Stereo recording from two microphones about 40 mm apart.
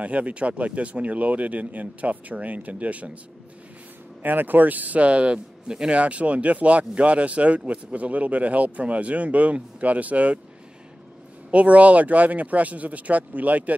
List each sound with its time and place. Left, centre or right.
0.0 s speech: right
4.2 s speech: right
11.5 s speech: right